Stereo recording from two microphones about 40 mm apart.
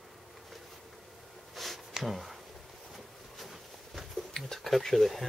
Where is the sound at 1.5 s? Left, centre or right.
Centre.